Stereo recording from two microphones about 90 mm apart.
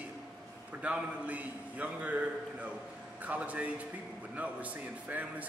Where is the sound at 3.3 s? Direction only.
15° right (ahead or behind).